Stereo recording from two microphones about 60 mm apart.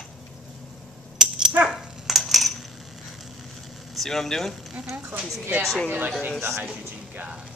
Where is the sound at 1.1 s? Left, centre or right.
Centre.